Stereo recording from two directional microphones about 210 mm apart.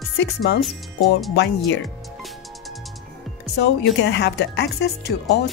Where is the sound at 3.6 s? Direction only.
60° left (ahead or behind).